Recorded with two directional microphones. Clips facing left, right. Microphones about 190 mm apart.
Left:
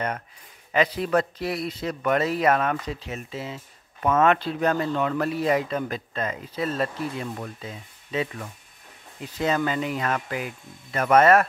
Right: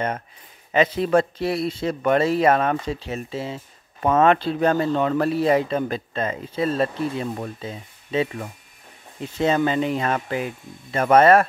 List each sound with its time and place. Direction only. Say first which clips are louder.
0.7 s speech: right 4 dB; 25° right (ahead or behind)